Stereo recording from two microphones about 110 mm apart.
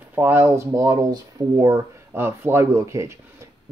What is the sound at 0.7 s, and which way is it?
Speech, 30° right (ahead or behind).